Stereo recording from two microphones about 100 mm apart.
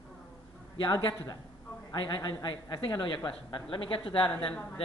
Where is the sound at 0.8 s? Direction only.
60° left (ahead or behind).